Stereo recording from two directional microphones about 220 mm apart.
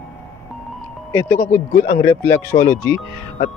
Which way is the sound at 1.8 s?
35° left (ahead or behind).